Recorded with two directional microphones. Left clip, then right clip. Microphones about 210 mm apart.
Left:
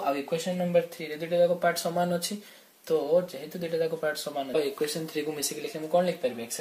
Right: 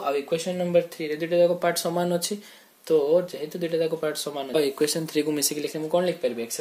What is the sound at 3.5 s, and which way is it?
Speech, 50° right (ahead or behind).